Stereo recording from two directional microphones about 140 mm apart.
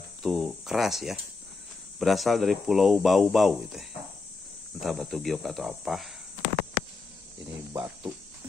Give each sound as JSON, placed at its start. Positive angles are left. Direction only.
{"t": 0.2, "sound": "speech", "side_deg": -5}
{"t": 7.7, "sound": "cricket", "side_deg": -30}